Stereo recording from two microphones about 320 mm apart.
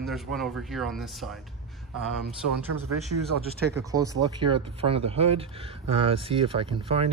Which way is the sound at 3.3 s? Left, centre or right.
Right.